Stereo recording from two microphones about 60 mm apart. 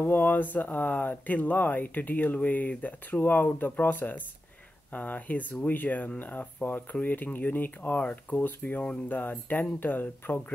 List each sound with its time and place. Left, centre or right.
0.0 s speech: left
8.4 s speech: left